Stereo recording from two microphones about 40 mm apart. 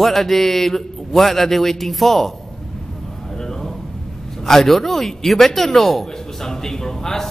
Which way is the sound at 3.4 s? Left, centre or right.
Centre.